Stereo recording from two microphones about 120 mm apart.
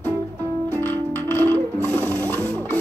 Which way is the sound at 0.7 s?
15° left (ahead or behind).